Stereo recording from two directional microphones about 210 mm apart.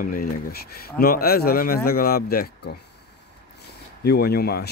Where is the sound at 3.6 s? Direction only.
50° left (ahead or behind).